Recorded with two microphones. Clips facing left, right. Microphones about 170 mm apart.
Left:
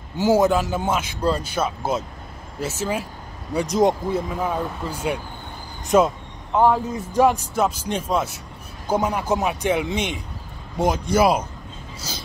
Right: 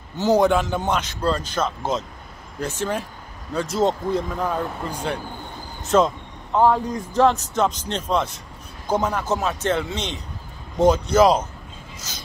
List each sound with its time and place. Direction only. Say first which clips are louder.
0.2 s speech: even; 5° left (ahead or behind)